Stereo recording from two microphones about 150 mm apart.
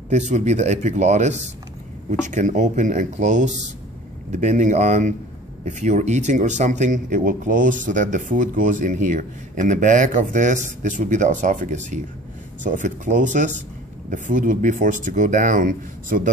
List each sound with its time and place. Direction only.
0.1 s speech: 50° right (ahead or behind)